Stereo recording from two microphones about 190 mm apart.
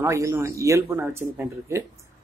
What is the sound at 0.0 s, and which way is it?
Speech, 15° right (ahead or behind).